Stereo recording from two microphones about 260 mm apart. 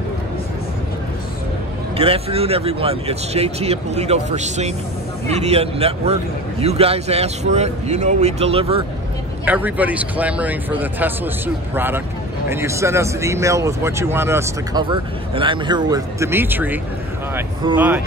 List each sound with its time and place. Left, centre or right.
2.0 s speech: right
9.4 s speech: centre